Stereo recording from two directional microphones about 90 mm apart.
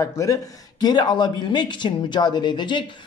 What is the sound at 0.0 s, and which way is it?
Speech, 40° left (ahead or behind).